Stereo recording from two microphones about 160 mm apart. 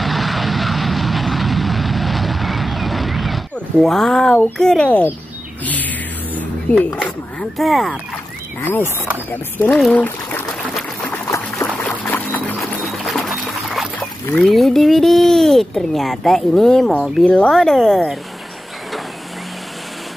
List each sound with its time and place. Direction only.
0.0 s vehicle: centre (ahead or behind)
5.7 s a sound: 10° left (ahead or behind)
8.5 s speech: 15° left (ahead or behind)
8.8 s speech: 15° right (ahead or behind)
9.3 s a child's voice: 10° left (ahead or behind)
11.1 s a sound: 15° left (ahead or behind)
11.5 s a sound: 5° left (ahead or behind)
12.8 s music: centre (ahead or behind)
14.4 s a child's voice: centre (ahead or behind)